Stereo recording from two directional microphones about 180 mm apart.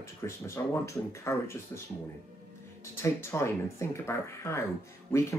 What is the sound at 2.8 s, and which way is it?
Speech, 15° left (ahead or behind).